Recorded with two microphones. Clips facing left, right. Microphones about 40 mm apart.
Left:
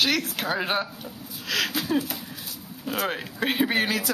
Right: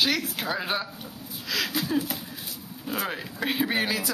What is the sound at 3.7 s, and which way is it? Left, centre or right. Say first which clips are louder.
Speech: left 2 dB; left.